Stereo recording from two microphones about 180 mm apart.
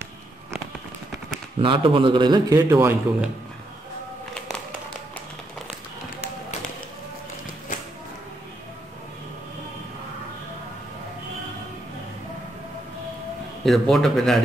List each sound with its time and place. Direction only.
1.6 s a man's voice: 30° right (ahead or behind); by 3.3 s 15° right (ahead or behind)
13.7 s a man's voice: centre (ahead or behind)